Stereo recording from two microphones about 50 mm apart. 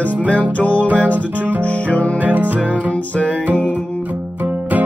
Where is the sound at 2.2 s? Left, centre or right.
Right.